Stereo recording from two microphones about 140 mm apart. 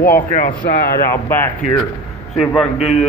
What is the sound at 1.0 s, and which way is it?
Speech, 15° left (ahead or behind).